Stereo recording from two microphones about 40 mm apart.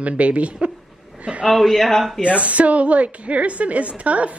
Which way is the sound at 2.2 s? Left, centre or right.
Right.